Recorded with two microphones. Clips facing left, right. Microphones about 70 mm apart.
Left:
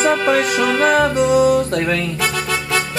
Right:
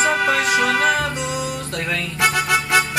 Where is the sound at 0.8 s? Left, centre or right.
Left.